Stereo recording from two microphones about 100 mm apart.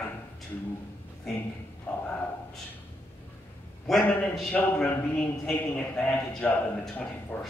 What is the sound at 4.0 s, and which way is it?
A man's voice, 20° left (ahead or behind).